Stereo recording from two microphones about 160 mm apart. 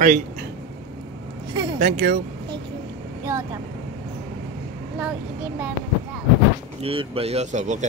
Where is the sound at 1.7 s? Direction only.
80° right.